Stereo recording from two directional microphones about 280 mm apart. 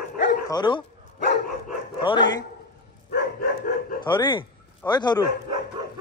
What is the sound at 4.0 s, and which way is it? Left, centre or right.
A man's voice, centre.